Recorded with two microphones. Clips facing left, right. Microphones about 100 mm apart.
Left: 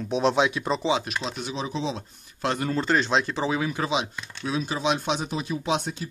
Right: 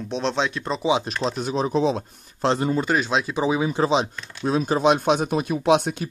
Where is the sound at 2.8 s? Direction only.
10° right (ahead or behind); by 6.1 s 65° right (ahead or behind).